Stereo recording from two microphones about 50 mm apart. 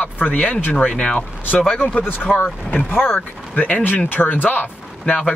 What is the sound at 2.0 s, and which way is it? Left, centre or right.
Speech, left.